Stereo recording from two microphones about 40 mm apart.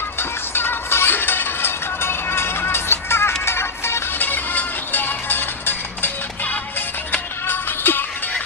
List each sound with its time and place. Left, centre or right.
0.2 s music: left
4.2 s music: left
7.4 s music: left